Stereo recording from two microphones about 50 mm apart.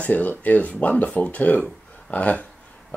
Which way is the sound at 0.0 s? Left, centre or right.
Left.